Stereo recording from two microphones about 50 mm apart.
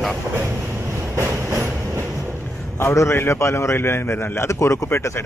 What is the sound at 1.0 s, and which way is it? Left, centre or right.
Train, right.